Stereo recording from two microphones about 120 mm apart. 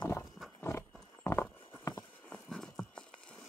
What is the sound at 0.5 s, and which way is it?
Horse, 20° left (ahead or behind).